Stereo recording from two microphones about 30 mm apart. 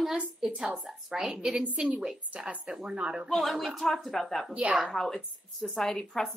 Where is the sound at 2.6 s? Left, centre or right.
Right.